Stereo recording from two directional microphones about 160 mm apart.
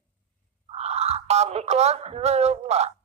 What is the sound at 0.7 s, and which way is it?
Speech, 40° right (ahead or behind).